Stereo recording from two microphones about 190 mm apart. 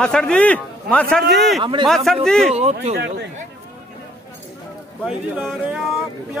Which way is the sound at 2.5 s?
35° right (ahead or behind).